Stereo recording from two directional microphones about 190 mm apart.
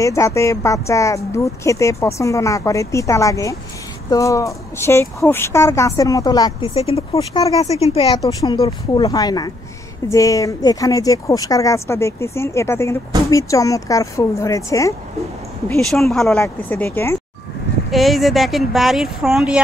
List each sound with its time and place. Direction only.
0.0 s speech: 15° left (ahead or behind)
7.8 s speech: 30° left (ahead or behind)
8.2 s speech: 20° left (ahead or behind)
15.9 s speech: centre (ahead or behind)
17.9 s speech: centre (ahead or behind)